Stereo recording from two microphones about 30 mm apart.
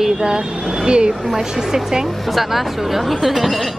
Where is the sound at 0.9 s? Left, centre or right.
Right.